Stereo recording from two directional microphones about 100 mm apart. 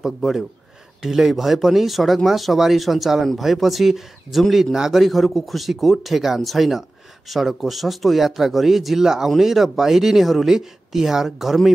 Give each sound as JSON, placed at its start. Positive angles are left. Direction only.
{"t": 0.0, "sound": "speech", "side_deg": -5}